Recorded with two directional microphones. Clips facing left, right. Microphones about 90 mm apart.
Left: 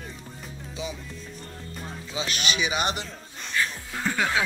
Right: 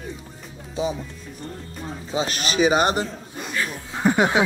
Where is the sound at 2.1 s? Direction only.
40° right (ahead or behind).